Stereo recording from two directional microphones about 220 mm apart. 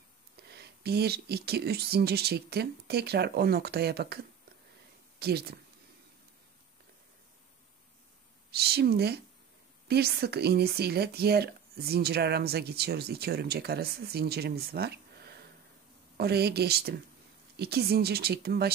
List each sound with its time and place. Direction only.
0.4 s speech: 45° right (ahead or behind)
5.2 s speech: 45° right (ahead or behind)
8.5 s speech: 45° right (ahead or behind)
16.2 s speech: 45° right (ahead or behind)